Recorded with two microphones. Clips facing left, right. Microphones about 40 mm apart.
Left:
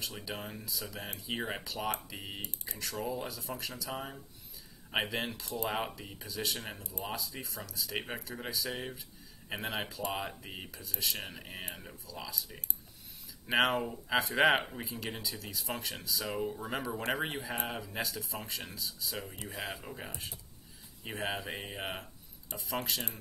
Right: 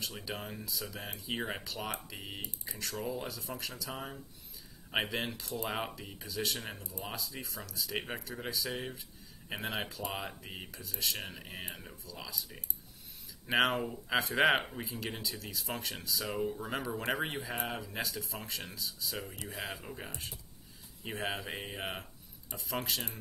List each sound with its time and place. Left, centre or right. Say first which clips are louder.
0.0 s speech: even; centre
13.5 s speech: left 1 dB; centre